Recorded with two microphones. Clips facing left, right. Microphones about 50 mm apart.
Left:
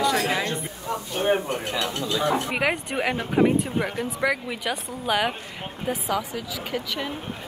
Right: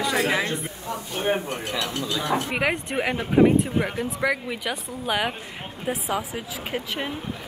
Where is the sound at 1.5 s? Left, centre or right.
Left.